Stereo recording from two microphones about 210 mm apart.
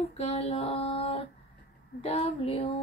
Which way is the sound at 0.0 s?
30° left (ahead or behind).